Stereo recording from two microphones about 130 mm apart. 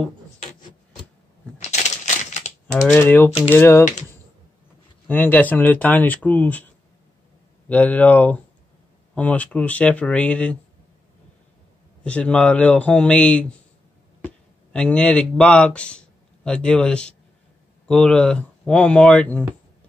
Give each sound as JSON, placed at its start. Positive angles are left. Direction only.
{"t": 1.6, "sound": "a sound", "side_deg": 60}
{"t": 3.0, "sound": "speech", "side_deg": 15}
{"t": 5.0, "sound": "speech", "side_deg": 15}
{"t": 12.0, "sound": "speech", "side_deg": 10}